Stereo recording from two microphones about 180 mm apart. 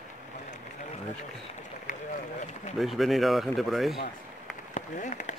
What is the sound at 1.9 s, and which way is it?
Run, 45° left (ahead or behind).